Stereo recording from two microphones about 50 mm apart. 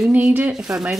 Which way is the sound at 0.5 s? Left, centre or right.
Centre.